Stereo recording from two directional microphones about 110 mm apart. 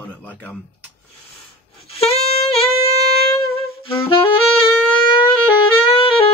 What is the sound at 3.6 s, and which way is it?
Saxophone, 55° left (ahead or behind).